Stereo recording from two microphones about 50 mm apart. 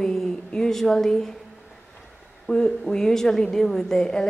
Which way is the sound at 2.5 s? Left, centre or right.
Centre.